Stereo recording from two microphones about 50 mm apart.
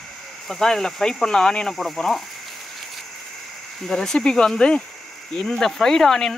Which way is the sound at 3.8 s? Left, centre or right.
Centre.